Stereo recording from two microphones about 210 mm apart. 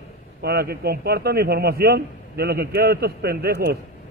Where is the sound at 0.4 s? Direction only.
50° right (ahead or behind).